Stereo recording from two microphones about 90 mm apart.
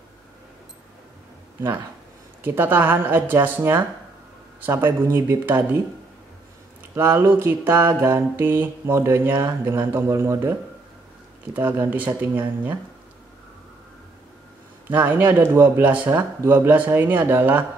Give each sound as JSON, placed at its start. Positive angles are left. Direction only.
{"t": 2.4, "sound": "mantra", "side_deg": -25}
{"t": 7.0, "sound": "mantra", "side_deg": -30}
{"t": 11.5, "sound": "mantra", "side_deg": -20}
{"t": 14.9, "sound": "mantra", "side_deg": -20}